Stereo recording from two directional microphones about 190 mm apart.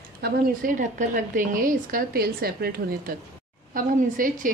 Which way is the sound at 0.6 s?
50° right (ahead or behind).